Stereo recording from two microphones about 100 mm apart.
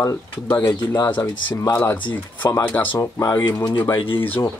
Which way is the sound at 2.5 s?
20° left (ahead or behind).